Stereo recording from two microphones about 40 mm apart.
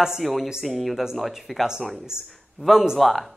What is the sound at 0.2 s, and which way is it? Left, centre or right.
Speech, centre.